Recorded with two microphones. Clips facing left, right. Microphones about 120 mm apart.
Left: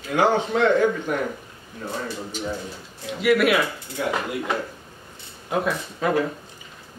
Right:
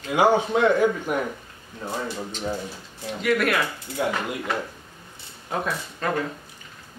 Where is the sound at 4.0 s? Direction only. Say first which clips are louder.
Right 1 dB; 25° right (ahead or behind).